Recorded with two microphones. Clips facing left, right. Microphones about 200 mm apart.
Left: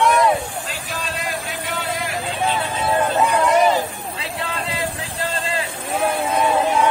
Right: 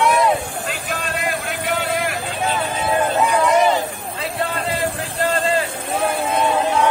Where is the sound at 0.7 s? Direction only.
55° right (ahead or behind).